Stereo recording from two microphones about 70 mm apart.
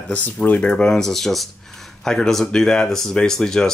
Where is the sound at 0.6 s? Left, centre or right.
Centre.